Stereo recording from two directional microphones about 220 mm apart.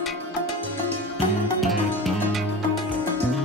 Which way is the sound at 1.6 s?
Centre (ahead or behind).